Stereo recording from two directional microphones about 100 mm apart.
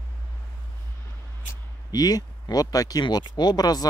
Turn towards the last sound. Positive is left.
turn(degrees=40)  # may be behind; listen again after turning